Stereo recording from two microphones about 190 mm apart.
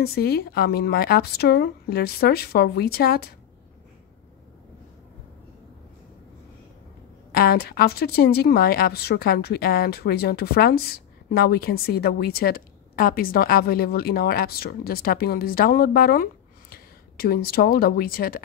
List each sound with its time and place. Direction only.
0.0 s a woman's voice: 55° left (ahead or behind)
7.3 s a woman's voice: 55° left (ahead or behind)